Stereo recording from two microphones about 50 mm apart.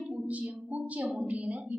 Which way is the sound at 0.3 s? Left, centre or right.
Right.